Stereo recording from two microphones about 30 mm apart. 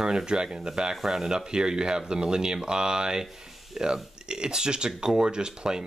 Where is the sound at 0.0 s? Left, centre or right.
Right.